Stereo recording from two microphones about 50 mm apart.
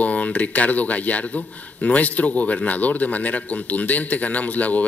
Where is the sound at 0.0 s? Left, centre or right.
Left.